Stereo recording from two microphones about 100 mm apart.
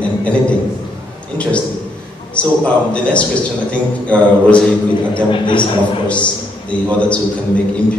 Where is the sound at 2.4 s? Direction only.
10° left (ahead or behind).